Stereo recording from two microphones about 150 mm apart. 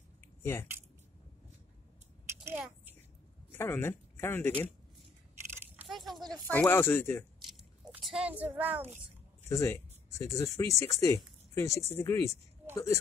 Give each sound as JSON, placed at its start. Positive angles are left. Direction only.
{"t": 0.4, "sound": "speech", "side_deg": 15}
{"t": 3.5, "sound": "speech", "side_deg": 15}
{"t": 5.9, "sound": "a sound", "side_deg": 0}
{"t": 6.4, "sound": "speech", "side_deg": 15}
{"t": 7.3, "sound": "biting", "side_deg": -5}
{"t": 9.5, "sound": "speech", "side_deg": 20}